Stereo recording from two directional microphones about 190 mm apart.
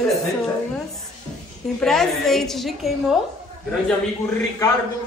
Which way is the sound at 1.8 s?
5° left (ahead or behind).